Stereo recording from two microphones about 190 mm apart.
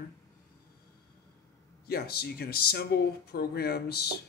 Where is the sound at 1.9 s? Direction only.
55° left (ahead or behind).